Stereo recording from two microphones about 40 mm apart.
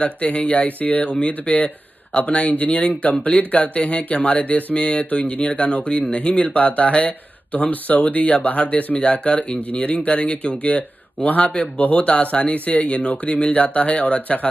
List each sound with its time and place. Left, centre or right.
0.0 s speech: left
3.3 s speech: left
11.2 s speech: left